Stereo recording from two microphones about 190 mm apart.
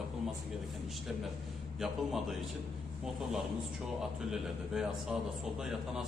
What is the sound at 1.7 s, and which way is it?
Speech, centre (ahead or behind).